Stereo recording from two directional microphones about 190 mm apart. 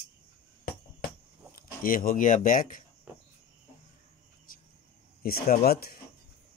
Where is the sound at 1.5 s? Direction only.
45° left (ahead or behind).